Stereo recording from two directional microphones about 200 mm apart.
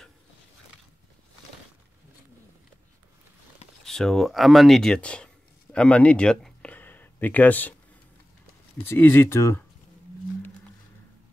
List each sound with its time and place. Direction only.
3.8 s speech: 5° left (ahead or behind)
8.8 s speech: 10° left (ahead or behind)